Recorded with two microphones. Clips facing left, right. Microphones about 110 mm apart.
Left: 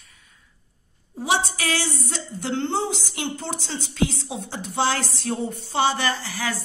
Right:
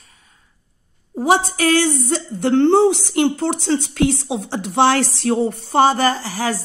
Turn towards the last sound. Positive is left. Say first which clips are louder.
# right 6 dB
turn(degrees=-40)  # may be behind; listen again after turning